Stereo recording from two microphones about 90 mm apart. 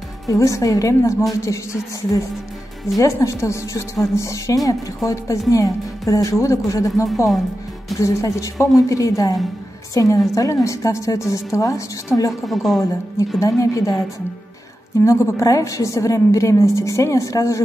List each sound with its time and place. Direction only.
0.3 s a woman's voice: 35° left (ahead or behind)
12.3 s a woman's voice: centre (ahead or behind)
13.4 s a woman's voice: 35° left (ahead or behind)
15.0 s a woman's voice: 35° left (ahead or behind)